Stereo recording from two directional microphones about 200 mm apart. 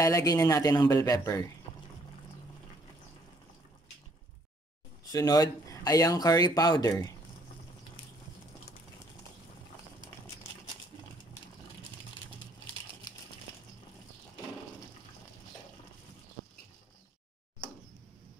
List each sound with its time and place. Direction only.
0.0 s speech: 15° left (ahead or behind)
5.1 s speech: 20° left (ahead or behind)